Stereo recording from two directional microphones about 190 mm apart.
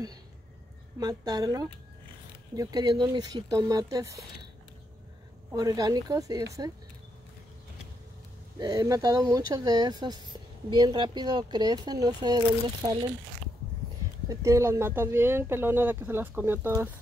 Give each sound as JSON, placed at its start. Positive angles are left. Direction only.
{"t": 0.9, "sound": "speech", "side_deg": -20}
{"t": 5.5, "sound": "speech", "side_deg": -20}
{"t": 8.5, "sound": "speech", "side_deg": -20}
{"t": 14.3, "sound": "speech", "side_deg": -15}